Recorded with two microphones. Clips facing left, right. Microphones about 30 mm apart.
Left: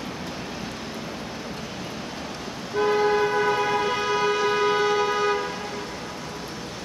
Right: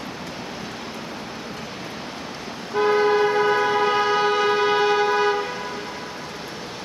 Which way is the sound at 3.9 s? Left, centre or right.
Right.